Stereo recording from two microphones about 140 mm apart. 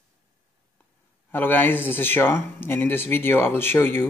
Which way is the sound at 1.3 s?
15° left (ahead or behind).